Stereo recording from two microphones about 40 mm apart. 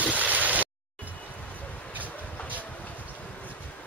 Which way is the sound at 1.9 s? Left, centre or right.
Right.